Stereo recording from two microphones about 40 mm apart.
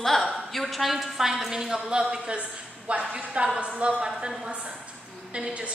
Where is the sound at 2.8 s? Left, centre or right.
Right.